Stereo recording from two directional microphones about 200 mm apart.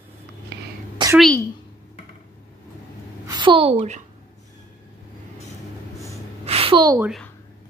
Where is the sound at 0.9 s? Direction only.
20° right (ahead or behind).